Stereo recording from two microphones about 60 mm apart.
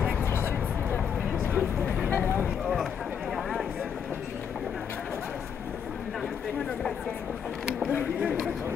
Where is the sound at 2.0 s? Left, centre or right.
Left.